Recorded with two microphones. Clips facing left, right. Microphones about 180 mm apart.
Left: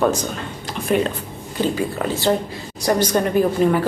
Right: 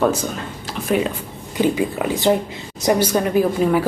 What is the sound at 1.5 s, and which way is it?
Speech, 15° right (ahead or behind).